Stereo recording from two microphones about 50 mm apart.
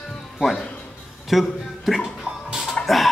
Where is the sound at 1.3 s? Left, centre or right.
Centre.